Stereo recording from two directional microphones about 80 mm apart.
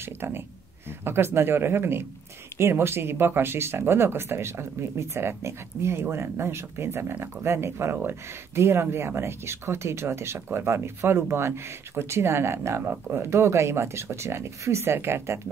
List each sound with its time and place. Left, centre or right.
0.0 s speech: right